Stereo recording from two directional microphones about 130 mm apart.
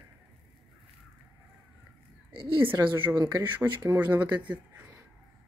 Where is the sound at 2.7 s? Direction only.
15° right (ahead or behind).